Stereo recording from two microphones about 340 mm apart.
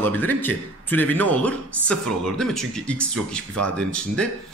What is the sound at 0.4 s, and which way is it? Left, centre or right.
Speech, centre.